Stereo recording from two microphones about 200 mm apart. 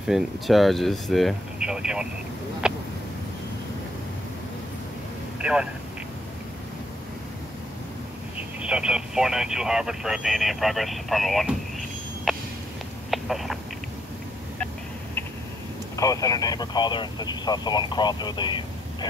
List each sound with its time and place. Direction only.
0.0 s speech: centre (ahead or behind)
2.6 s a sound: 5° right (ahead or behind)
5.4 s speech: 5° right (ahead or behind)
8.6 s speech: 5° right (ahead or behind)
12.3 s a sound: centre (ahead or behind)
13.1 s speech: centre (ahead or behind)
16.0 s speech: 15° left (ahead or behind)